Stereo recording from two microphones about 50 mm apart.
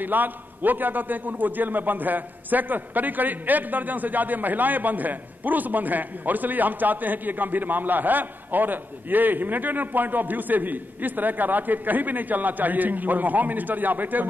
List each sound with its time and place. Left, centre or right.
0.0 s a man's voice: right